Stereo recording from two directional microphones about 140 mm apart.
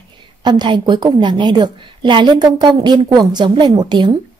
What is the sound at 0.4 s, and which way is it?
A woman's voice, 30° right (ahead or behind).